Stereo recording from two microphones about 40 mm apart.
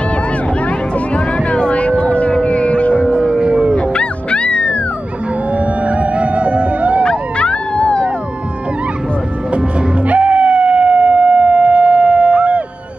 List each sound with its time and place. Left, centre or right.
0.7 s music: left
1.6 s vehicle: left
2.4 s music: left
3.2 s music: right
3.7 s music: left
5.5 s music: right
7.1 s howl: left
10.0 s music: right